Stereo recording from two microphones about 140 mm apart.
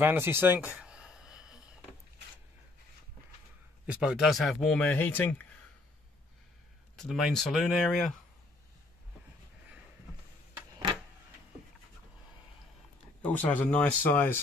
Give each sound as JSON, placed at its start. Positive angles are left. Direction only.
{"t": 0.0, "sound": "a sound", "side_deg": -15}
{"t": 3.8, "sound": "speech", "side_deg": -5}
{"t": 7.0, "sound": "speech", "side_deg": 0}
{"t": 13.2, "sound": "speech", "side_deg": 10}